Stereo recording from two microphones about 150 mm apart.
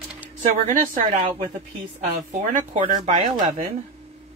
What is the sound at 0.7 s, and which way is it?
Speech, 65° right (ahead or behind).